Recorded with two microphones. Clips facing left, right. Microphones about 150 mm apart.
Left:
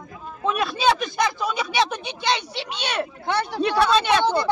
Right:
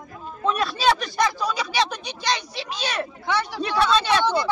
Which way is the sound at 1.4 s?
25° left (ahead or behind).